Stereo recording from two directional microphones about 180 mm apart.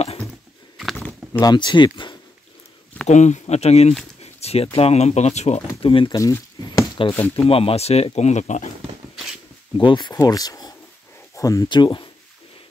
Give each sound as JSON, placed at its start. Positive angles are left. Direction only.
{"t": 0.9, "sound": "a sound", "side_deg": 10}
{"t": 1.4, "sound": "speech", "side_deg": 25}
{"t": 3.1, "sound": "speech", "side_deg": 40}
{"t": 4.2, "sound": "a sound", "side_deg": 35}
{"t": 4.6, "sound": "speech", "side_deg": 35}
{"t": 7.4, "sound": "speech", "side_deg": 30}
{"t": 9.8, "sound": "speech", "side_deg": 25}